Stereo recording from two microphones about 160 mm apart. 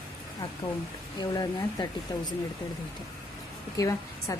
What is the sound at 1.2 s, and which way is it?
Speech, 25° left (ahead or behind).